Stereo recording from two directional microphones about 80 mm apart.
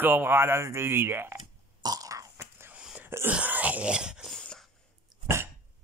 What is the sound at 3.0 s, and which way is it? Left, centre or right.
Wail, right.